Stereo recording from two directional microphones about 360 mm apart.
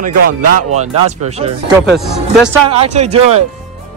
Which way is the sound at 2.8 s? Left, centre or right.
Centre.